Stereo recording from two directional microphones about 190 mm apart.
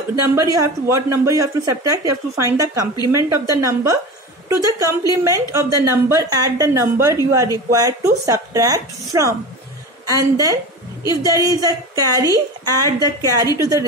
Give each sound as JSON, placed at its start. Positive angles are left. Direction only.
{"t": 0.4, "sound": "a woman's voice", "side_deg": -15}